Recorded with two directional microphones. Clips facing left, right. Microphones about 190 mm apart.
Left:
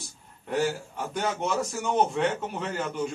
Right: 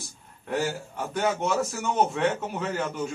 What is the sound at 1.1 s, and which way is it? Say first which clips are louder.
A man's voice: right 3 dB; centre (ahead or behind).